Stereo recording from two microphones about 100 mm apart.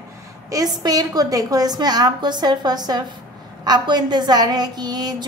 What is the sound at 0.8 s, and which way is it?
A woman's voice, 40° right (ahead or behind).